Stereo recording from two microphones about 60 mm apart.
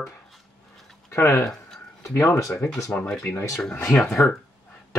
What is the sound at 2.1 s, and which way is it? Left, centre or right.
Speech, left.